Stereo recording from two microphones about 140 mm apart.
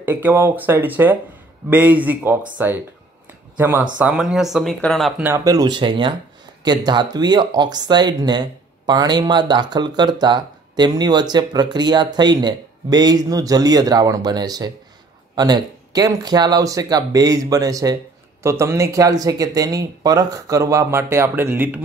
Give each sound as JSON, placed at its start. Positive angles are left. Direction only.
{"t": 0.0, "sound": "speech", "side_deg": -15}
{"t": 5.2, "sound": "speech", "side_deg": -25}